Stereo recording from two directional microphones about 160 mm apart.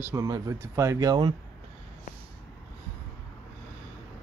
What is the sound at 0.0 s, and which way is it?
Speech, 20° right (ahead or behind).